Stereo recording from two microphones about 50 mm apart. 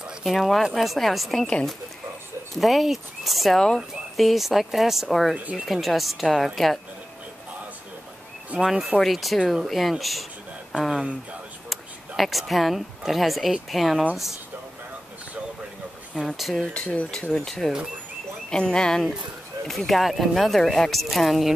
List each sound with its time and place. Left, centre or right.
0.3 s a woman's voice: centre
1.4 s speech: centre
2.5 s a woman's voice: centre
8.5 s a woman's voice: centre
12.2 s a woman's voice: centre
16.3 s a woman's voice: centre
16.7 s speech: left
17.1 s speech: centre
19.9 s a woman's voice: centre